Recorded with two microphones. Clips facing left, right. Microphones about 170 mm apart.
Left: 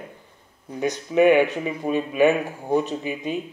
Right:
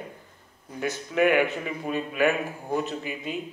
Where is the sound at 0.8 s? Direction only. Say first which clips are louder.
Left 6 dB; 20° left (ahead or behind).